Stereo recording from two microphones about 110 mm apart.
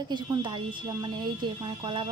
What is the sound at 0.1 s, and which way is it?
A woman's voice, 45° right (ahead or behind).